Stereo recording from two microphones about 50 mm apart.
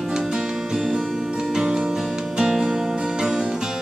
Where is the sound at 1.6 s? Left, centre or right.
Centre.